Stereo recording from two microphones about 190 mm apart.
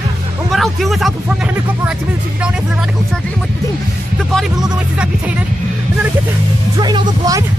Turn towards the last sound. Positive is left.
turn(degrees=-20)  # may be behind; listen again after turning